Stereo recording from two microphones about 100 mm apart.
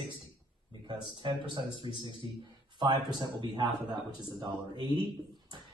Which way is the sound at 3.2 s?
50° right (ahead or behind).